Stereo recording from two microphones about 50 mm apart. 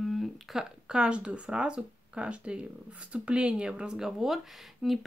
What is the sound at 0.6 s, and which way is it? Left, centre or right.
Speech, centre.